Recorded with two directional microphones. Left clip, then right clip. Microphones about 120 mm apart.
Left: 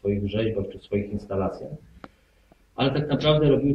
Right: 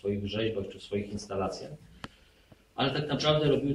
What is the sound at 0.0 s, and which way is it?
A man's voice, 15° right (ahead or behind).